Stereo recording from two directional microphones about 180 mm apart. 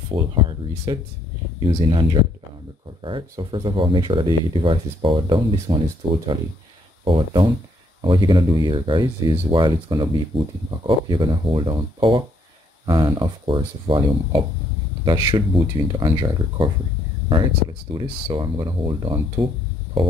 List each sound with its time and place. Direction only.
0.1 s speech: 25° right (ahead or behind)